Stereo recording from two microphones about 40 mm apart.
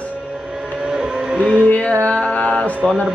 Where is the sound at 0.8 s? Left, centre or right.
Right.